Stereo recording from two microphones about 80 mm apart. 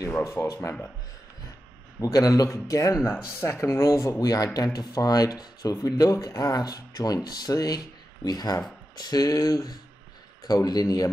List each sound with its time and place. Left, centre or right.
0.1 s speech: left
2.0 s speech: left